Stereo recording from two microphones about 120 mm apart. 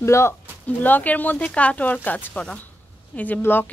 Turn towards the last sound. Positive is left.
turn(degrees=15)  # may be behind; listen again after turning